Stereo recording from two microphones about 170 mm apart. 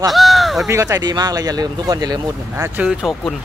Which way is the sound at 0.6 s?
20° right (ahead or behind).